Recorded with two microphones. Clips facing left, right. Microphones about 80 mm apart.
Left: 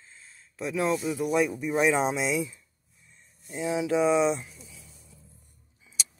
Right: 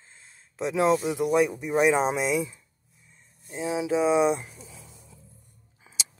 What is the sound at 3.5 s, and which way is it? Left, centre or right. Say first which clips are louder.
Speech: even; right.